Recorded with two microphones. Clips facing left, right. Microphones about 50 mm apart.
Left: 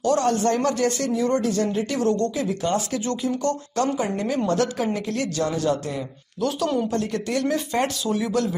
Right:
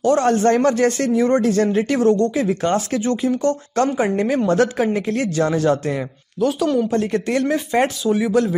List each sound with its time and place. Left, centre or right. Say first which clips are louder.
0.0 s speech: right 5 dB; right
2.0 s speech: right 5 dB; right
2.4 s speech: right 5 dB; right
3.0 s speech: right 6 dB; right
5.5 s speech: right 6 dB; right
6.4 s speech: right 5 dB; centre